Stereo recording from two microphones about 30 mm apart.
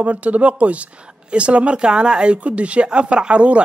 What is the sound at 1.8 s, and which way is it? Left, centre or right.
Speech, right.